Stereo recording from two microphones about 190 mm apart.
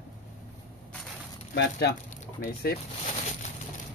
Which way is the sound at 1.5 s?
60° left (ahead or behind).